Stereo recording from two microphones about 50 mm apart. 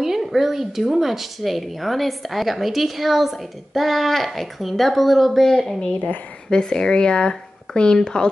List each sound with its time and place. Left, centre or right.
0.0 s speech: centre
5.6 s speech: centre